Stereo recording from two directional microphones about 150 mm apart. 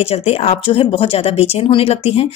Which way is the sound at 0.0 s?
40° left (ahead or behind).